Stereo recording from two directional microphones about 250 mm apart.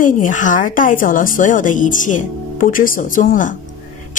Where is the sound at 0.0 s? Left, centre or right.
Left.